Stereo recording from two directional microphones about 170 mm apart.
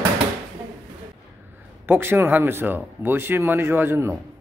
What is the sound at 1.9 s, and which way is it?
Speech, 10° right (ahead or behind).